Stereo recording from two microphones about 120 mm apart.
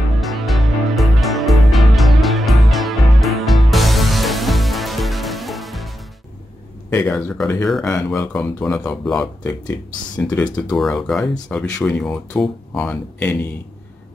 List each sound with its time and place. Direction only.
0.2 s music: centre (ahead or behind)
6.9 s speech: 25° left (ahead or behind)
8.4 s speech: 5° left (ahead or behind)
9.2 s speech: 15° left (ahead or behind)